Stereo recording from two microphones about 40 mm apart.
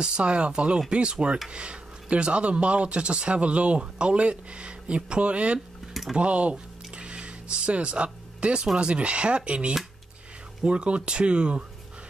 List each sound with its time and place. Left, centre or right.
0.0 s speech: right
7.0 s a sound: right
8.7 s speech: right